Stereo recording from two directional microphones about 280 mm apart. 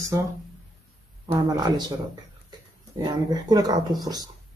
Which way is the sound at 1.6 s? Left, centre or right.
Centre.